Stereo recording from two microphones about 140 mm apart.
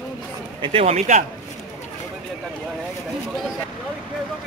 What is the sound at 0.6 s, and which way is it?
Speech, 45° right (ahead or behind).